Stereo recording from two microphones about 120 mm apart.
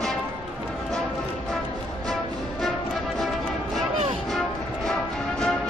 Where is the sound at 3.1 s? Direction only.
Centre (ahead or behind).